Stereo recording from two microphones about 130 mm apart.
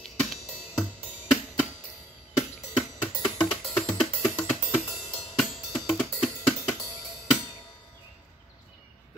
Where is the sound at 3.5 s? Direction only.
5° left (ahead or behind).